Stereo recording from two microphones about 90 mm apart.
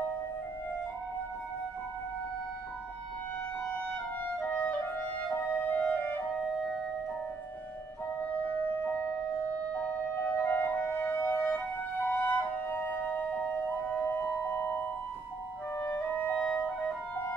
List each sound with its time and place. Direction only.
4.4 s clarinet: 20° left (ahead or behind)
6.4 s music: centre (ahead or behind)
8.3 s music: 15° left (ahead or behind)
15.8 s clarinet: 25° left (ahead or behind)
16.5 s music: 20° left (ahead or behind)